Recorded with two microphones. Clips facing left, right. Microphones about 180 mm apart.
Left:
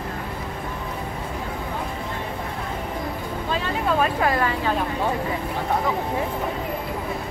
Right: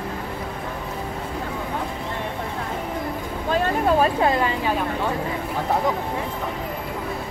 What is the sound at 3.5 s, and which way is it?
Vehicle, 50° right (ahead or behind).